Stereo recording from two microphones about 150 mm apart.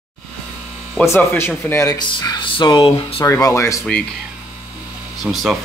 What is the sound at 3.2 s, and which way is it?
Speech, 20° left (ahead or behind).